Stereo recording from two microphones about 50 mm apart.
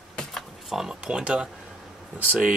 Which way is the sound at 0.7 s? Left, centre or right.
Centre.